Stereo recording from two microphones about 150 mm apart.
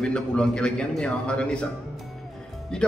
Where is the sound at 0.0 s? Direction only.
5° left (ahead or behind).